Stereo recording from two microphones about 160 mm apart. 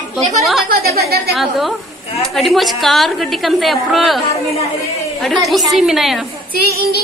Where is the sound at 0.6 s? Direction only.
75° right (ahead or behind).